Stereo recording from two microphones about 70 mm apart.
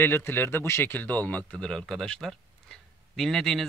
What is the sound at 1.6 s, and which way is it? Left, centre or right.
Speech, centre.